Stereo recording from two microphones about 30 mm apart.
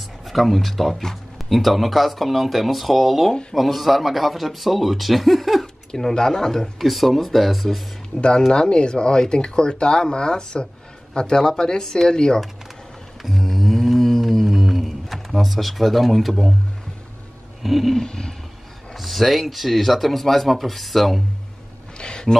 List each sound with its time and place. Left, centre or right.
0.2 s speech: centre
6.1 s speech: centre
6.8 s speech: centre
8.5 s speech: left
13.2 s mantra: centre
13.9 s humming: centre
17.6 s speech: centre
17.9 s speech: left
18.9 s speech: centre
21.9 s a sound: left